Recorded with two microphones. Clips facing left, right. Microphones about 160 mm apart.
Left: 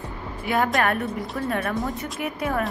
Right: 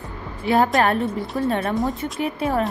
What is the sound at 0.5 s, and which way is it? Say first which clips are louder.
A woman's voice: right 4 dB; 30° right (ahead or behind).